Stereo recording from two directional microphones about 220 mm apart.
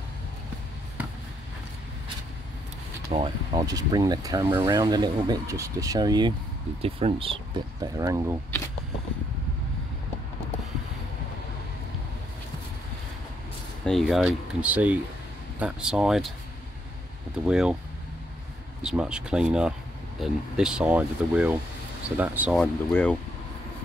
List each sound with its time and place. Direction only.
3.1 s speech: 20° right (ahead or behind)
7.8 s speech: 15° right (ahead or behind)
13.8 s speech: centre (ahead or behind)
17.5 s speech: 5° right (ahead or behind)
18.8 s speech: 5° right (ahead or behind)
22.6 s speech: 5° left (ahead or behind)